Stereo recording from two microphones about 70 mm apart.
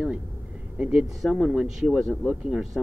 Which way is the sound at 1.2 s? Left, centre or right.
Centre.